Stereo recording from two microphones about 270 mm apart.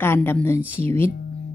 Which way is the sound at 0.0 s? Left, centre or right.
Centre.